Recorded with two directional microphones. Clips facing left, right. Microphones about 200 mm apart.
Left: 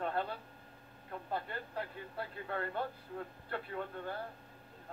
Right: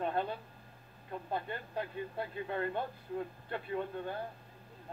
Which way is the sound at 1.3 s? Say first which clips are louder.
Right 1 dB; 15° right (ahead or behind).